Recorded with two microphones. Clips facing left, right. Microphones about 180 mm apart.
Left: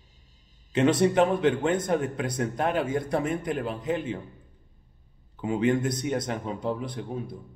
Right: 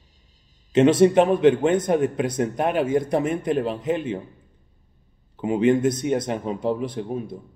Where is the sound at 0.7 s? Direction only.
20° right (ahead or behind).